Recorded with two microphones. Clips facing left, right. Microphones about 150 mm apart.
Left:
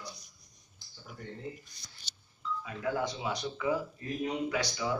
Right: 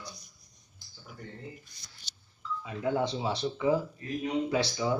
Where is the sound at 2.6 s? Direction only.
25° right (ahead or behind).